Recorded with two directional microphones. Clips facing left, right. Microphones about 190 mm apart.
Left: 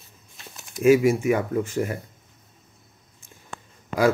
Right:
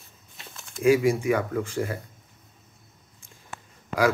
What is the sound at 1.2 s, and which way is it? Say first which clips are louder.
Speech: left 2 dB; 20° left (ahead or behind).